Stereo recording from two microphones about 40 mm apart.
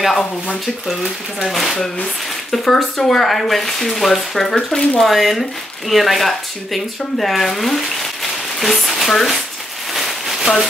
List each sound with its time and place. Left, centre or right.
1.4 s speech: centre
4.6 s speech: centre
5.0 s speech: centre
9.9 s a sound: centre